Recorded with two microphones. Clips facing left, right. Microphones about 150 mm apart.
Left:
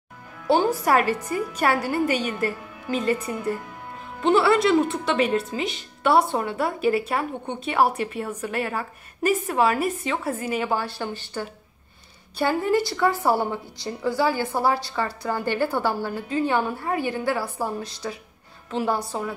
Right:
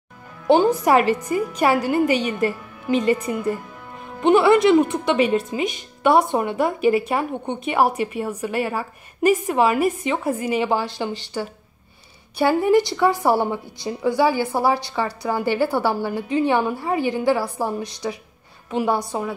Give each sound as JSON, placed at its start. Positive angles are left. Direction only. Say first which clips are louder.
{"t": 0.5, "sound": "a woman's voice", "louder": "right 4 dB", "side_deg": -20}
{"t": 3.1, "sound": "a woman's voice", "louder": "right 4 dB", "side_deg": -15}